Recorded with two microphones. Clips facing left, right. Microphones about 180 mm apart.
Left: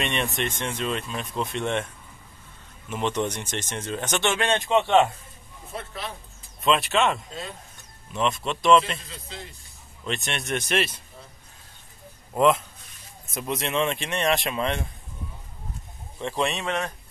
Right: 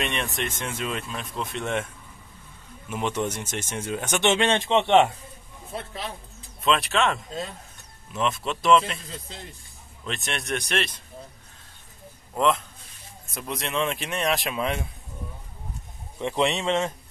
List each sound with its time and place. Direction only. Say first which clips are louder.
0.0 s speech: left 2 dB; centre (ahead or behind)
2.9 s speech: left 1 dB; 5° right (ahead or behind)
4.3 s a man's voice: right 2 dB; 25° right (ahead or behind)
6.6 s speech: left 1 dB; centre (ahead or behind)
10.0 s speech: left 1 dB; centre (ahead or behind)
12.4 s speech: left 3 dB; 5° left (ahead or behind)
16.2 s a man's voice: right 3 dB; 15° right (ahead or behind)